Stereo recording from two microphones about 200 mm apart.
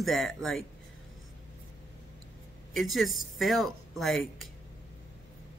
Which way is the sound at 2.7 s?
Centre (ahead or behind).